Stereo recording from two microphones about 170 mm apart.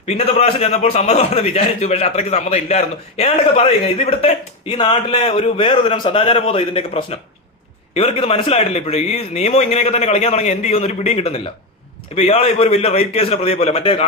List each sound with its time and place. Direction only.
0.0 s a man's voice: 40° left (ahead or behind)